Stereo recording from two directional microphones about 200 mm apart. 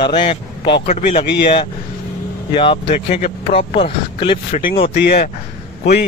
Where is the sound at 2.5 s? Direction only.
25° left (ahead or behind).